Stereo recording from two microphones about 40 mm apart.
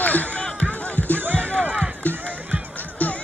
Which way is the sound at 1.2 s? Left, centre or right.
Right.